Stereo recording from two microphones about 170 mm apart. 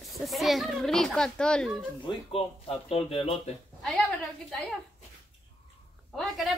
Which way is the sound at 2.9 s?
35° left (ahead or behind).